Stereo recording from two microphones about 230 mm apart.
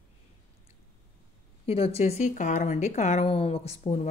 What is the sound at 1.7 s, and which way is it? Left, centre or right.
Speech, left.